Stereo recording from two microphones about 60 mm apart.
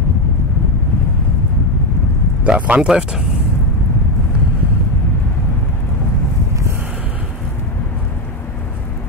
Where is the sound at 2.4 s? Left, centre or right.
Right.